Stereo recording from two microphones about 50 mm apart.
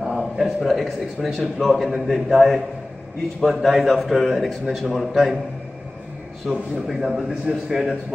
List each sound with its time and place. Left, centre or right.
0.0 s a man's voice: centre
6.5 s a man's voice: centre